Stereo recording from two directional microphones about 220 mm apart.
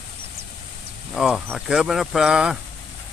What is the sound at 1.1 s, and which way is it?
Speech, centre (ahead or behind).